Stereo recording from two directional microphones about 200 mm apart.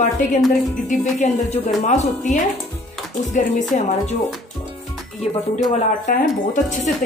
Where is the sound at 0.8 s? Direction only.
35° left (ahead or behind).